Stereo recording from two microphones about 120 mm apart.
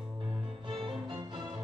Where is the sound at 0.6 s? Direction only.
40° right (ahead or behind).